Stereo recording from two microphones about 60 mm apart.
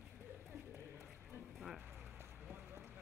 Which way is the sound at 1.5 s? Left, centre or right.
Centre.